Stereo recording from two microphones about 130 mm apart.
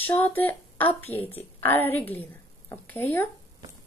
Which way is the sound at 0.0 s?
15° left (ahead or behind).